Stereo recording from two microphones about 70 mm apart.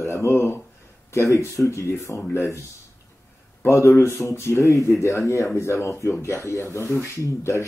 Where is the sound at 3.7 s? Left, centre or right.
Left.